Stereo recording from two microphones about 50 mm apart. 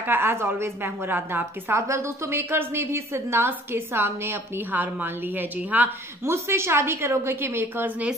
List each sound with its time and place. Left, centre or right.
0.0 s a woman's voice: right
1.7 s a woman's voice: right
4.6 s a woman's voice: right
6.2 s a woman's voice: right